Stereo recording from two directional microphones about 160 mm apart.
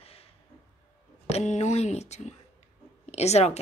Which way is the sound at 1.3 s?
45° left (ahead or behind).